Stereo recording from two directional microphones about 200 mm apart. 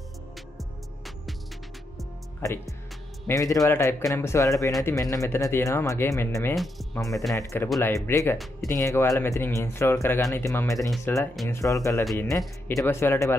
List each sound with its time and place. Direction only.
3.3 s speech: 15° left (ahead or behind)
6.5 s speech: centre (ahead or behind)
7.0 s speech: 15° left (ahead or behind)